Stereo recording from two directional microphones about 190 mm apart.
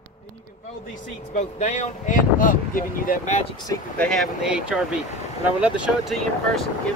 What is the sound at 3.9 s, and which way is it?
Speech, 5° left (ahead or behind).